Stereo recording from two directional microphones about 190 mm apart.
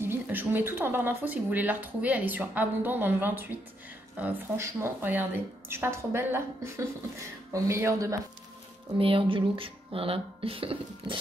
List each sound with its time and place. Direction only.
0.0 s a woman's voice: 10° right (ahead or behind)
8.9 s speech: 25° right (ahead or behind)